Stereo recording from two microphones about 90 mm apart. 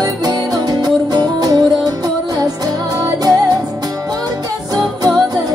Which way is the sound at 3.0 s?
45° right (ahead or behind).